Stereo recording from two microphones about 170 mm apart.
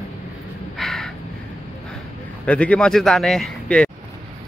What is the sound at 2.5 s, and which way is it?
A man's voice, 10° left (ahead or behind).